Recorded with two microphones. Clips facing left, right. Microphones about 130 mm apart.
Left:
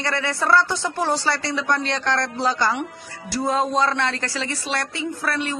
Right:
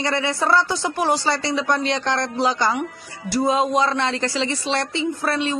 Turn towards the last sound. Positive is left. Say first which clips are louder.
# right 3 dB
turn(degrees=-25)  # may be behind; listen again after turning